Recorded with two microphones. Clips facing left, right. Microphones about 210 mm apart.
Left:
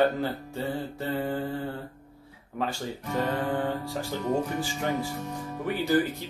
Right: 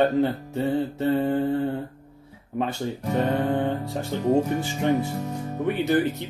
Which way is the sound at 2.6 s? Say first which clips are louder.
Right 4 dB; 25° right (ahead or behind).